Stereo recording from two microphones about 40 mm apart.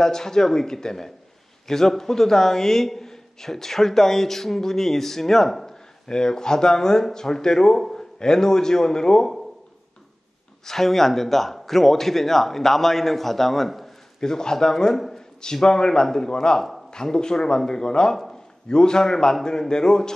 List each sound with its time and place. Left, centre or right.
0.0 s a man's voice: centre
10.6 s a man's voice: centre
14.2 s a man's voice: centre